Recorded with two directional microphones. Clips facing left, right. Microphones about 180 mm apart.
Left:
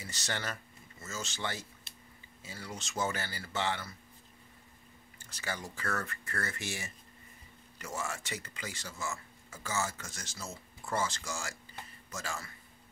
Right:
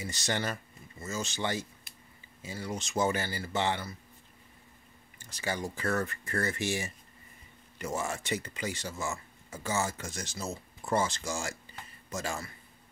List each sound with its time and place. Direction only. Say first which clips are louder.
0.0 s speech: right 6 dB; 15° right (ahead or behind)
5.4 s speech: right 6 dB; 20° right (ahead or behind)